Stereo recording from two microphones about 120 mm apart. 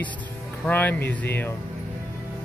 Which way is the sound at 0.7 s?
15° left (ahead or behind).